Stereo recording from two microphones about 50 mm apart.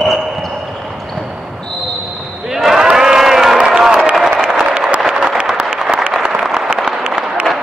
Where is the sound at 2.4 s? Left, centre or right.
Centre.